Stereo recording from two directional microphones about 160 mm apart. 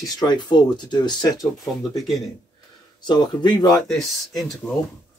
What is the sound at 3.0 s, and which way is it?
Speech, 30° left (ahead or behind).